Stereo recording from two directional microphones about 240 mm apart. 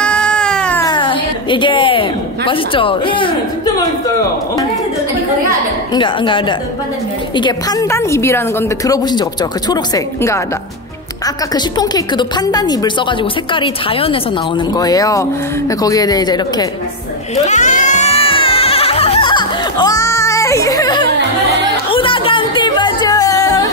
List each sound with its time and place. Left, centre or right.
0.0 s cat: centre
0.8 s a woman's voice: centre
5.9 s speech: centre
11.5 s speech: centre
17.5 s music: left; by 23.7 s centre